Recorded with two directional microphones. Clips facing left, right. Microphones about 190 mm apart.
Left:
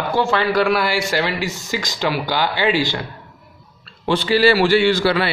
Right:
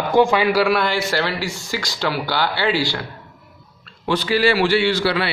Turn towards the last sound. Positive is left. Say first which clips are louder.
# left 3 dB
turn(degrees=45)  # may be behind; listen again after turning